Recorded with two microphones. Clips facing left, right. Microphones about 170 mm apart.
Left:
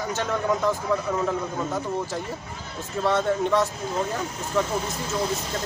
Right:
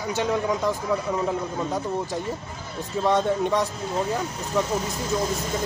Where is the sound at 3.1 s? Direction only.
15° right (ahead or behind).